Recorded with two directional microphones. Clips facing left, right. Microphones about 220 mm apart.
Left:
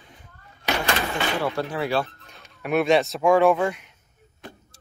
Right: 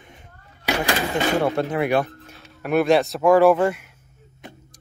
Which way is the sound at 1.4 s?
25° right (ahead or behind).